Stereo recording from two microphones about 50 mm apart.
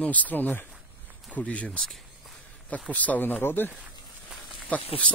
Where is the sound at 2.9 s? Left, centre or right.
Left.